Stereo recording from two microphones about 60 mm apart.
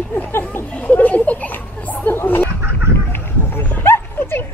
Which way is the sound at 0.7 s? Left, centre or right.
Left.